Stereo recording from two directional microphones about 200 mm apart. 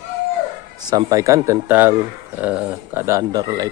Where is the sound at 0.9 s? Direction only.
20° right (ahead or behind).